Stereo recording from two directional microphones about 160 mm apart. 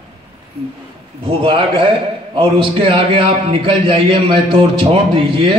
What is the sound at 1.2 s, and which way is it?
A man's voice, 35° right (ahead or behind).